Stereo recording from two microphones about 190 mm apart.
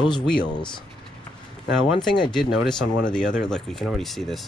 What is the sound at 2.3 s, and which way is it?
Speech, centre (ahead or behind).